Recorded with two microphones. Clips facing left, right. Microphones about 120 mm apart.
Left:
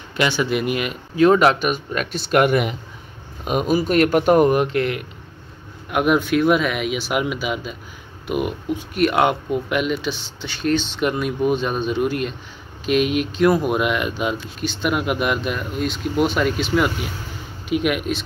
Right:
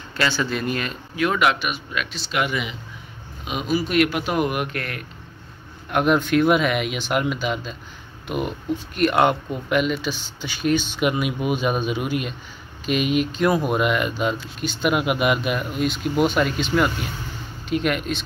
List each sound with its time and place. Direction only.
0.1 s speech: 20° left (ahead or behind)
1.1 s speech: 35° left (ahead or behind)
4.7 s speech: 20° left (ahead or behind)
5.9 s speech: 5° left (ahead or behind)